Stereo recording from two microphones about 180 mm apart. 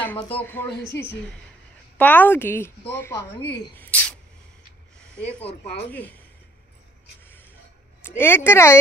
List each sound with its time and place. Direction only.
2.0 s a woman's voice: 10° left (ahead or behind)
5.4 s speech: 35° left (ahead or behind)
5.9 s a woman's voice: 10° left (ahead or behind)
8.0 s a woman's voice: 10° left (ahead or behind)